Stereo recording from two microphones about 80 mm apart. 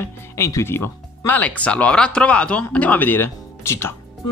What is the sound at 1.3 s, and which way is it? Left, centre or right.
Speech, centre.